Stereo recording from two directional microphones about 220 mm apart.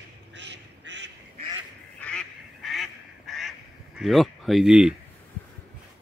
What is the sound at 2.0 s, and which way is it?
Goose, 5° left (ahead or behind).